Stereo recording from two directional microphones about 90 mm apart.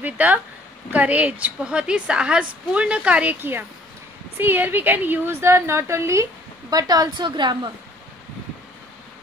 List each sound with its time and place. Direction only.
0.0 s a woman's voice: 20° right (ahead or behind)
4.4 s a woman's voice: 25° right (ahead or behind)
6.7 s a woman's voice: 45° right (ahead or behind)